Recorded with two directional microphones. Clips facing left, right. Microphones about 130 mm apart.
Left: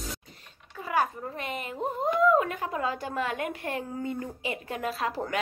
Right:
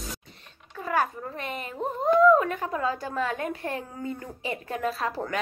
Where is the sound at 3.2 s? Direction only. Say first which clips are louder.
Right 1 dB; 35° right (ahead or behind).